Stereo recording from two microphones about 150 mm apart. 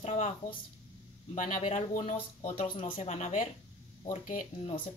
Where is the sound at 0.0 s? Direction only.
45° left (ahead or behind).